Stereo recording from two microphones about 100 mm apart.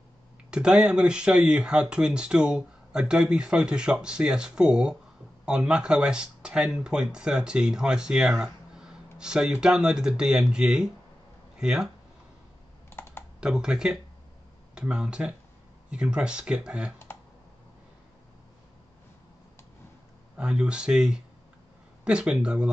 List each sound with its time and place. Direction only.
0.5 s speech: 10° right (ahead or behind)
12.9 s computer keyboard: 25° left (ahead or behind)
13.4 s speech: 10° right (ahead or behind)
20.3 s speech: 10° right (ahead or behind)